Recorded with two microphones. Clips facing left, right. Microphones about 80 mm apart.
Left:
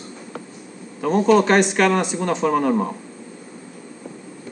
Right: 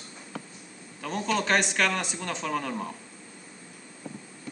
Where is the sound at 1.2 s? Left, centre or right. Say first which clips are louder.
Left 10 dB; centre.